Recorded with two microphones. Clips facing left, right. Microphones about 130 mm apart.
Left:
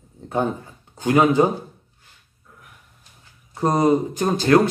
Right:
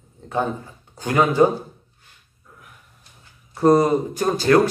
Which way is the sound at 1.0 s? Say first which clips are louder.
Left 3 dB; 15° left (ahead or behind).